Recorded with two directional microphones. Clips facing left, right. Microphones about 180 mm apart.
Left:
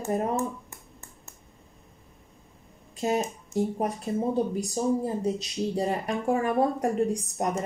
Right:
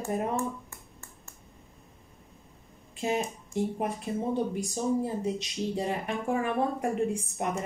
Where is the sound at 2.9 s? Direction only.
40° left (ahead or behind).